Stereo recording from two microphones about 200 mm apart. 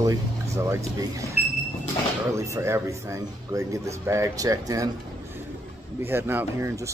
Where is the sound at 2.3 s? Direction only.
15° right (ahead or behind).